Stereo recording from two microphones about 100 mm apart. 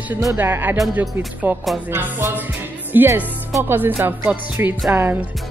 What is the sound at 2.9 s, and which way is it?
Speech, 20° right (ahead or behind).